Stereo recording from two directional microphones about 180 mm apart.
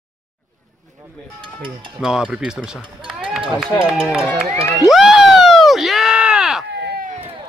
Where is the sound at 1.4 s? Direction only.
30° right (ahead or behind).